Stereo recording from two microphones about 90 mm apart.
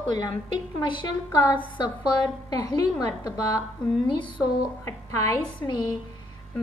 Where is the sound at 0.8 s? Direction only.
65° left (ahead or behind).